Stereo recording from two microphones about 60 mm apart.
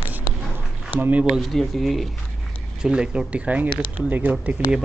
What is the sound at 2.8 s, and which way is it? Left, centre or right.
Speech, centre.